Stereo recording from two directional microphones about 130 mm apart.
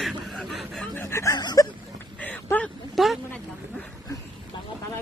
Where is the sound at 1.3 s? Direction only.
30° left (ahead or behind).